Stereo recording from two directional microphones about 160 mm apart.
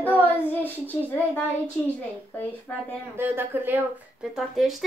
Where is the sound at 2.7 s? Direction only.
10° left (ahead or behind).